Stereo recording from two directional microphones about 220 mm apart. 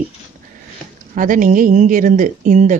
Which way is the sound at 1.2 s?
35° right (ahead or behind).